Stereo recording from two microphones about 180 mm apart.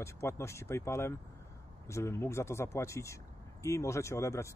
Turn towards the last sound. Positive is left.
turn(degrees=15)  # may be behind; listen again after turning